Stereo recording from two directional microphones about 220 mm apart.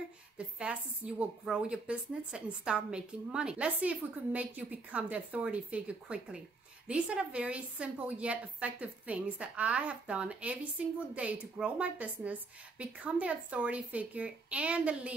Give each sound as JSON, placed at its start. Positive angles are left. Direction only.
{"t": 0.6, "sound": "a woman's voice", "side_deg": -5}